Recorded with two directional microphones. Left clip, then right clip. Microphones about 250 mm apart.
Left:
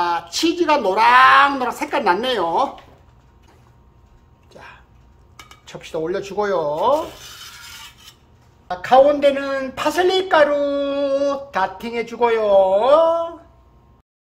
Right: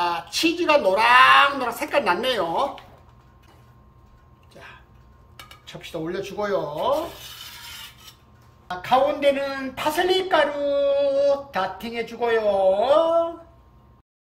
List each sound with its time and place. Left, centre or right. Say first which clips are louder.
0.0 s a woman's voice: left 3 dB; centre
4.5 s music: left 3 dB; centre
5.7 s a woman's voice: left 7 dB; centre
8.6 s a woman's voice: left 7 dB; centre